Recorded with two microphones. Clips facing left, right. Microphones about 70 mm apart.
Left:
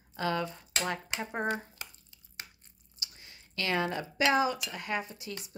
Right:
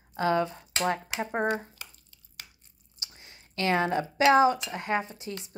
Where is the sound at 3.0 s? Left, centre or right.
Right.